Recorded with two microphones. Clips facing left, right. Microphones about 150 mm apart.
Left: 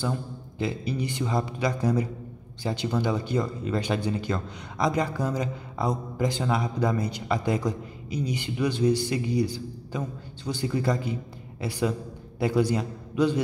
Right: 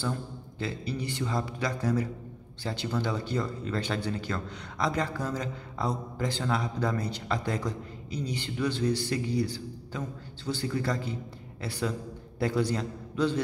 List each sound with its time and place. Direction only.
0.0 s a man's voice: 15° left (ahead or behind)